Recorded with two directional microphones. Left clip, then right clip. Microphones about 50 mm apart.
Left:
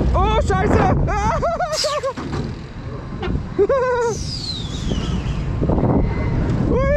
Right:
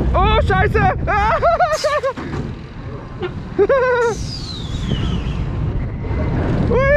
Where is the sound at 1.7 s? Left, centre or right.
Left.